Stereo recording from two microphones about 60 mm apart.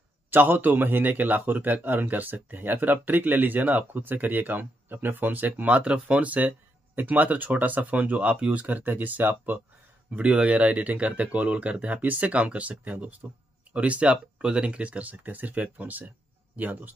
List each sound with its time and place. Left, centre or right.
0.3 s speech: right